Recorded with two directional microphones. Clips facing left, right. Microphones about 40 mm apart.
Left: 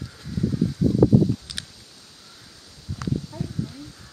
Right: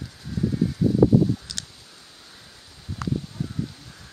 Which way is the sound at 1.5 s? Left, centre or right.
Centre.